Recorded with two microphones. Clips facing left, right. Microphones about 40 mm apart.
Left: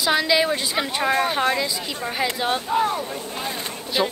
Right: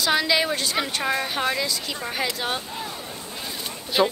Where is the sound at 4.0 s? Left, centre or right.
Centre.